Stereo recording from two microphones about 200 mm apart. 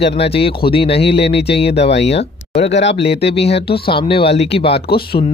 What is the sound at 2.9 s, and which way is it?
Speech, 30° left (ahead or behind).